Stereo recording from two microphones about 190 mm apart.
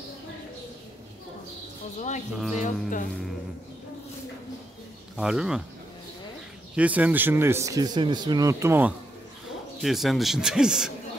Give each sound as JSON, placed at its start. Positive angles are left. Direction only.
{"t": 2.0, "sound": "speech", "side_deg": 40}
{"t": 2.3, "sound": "speech", "side_deg": -5}
{"t": 5.1, "sound": "speech", "side_deg": -5}
{"t": 6.7, "sound": "a man's voice", "side_deg": -5}
{"t": 9.8, "sound": "speech", "side_deg": 0}